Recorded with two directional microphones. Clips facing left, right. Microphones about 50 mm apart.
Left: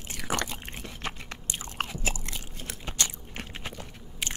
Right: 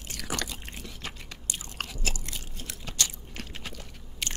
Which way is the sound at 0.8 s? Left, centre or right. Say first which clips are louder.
Left 4 dB; left.